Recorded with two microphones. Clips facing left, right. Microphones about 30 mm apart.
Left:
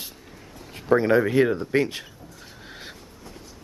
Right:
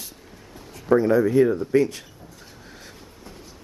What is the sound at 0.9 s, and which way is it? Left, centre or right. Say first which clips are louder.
Speech: right 1 dB; left.